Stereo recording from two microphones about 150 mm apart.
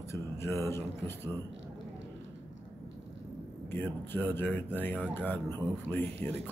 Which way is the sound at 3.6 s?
15° left (ahead or behind).